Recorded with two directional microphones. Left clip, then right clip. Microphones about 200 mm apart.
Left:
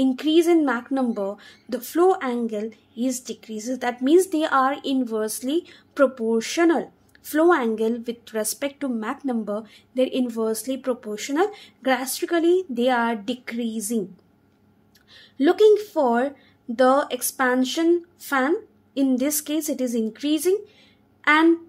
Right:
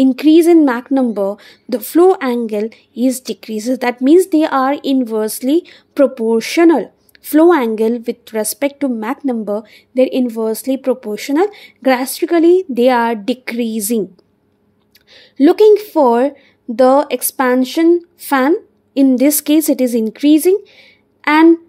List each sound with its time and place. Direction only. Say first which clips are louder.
0.0 s speech: right 10 dB; 35° right (ahead or behind)
15.0 s speech: right 9 dB; 35° right (ahead or behind)